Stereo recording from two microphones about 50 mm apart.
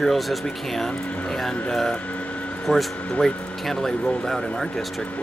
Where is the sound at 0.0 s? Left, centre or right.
Centre.